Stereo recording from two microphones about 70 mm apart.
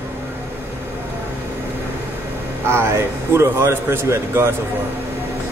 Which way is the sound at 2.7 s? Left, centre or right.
Right.